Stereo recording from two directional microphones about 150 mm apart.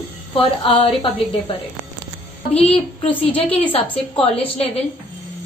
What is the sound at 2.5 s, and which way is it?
Speech, 40° left (ahead or behind).